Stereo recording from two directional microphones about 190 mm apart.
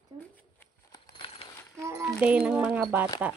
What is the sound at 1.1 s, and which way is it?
Coin, 30° left (ahead or behind).